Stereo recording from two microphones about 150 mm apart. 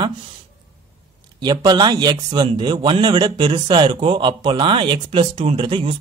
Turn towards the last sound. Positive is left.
turn(degrees=-35)  # may be behind; listen again after turning